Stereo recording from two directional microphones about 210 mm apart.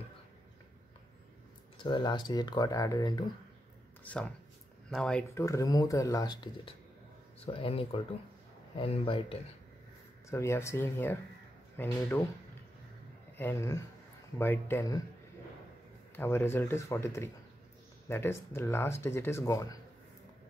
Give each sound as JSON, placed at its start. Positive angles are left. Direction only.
{"t": 1.8, "sound": "speech", "side_deg": 20}
{"t": 4.0, "sound": "speech", "side_deg": 5}
{"t": 5.3, "sound": "speech", "side_deg": 15}
{"t": 10.3, "sound": "speech", "side_deg": 15}
{"t": 13.4, "sound": "speech", "side_deg": 10}
{"t": 16.2, "sound": "speech", "side_deg": 10}